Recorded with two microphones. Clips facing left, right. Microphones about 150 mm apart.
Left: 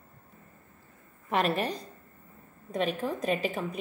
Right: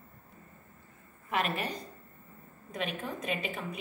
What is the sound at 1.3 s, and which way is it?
A woman's voice, 35° left (ahead or behind).